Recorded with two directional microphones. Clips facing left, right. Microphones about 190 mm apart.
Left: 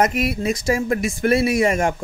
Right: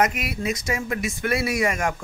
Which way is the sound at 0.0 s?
30° left (ahead or behind).